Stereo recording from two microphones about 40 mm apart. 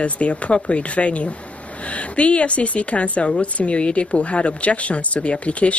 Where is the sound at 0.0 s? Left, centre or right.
Left.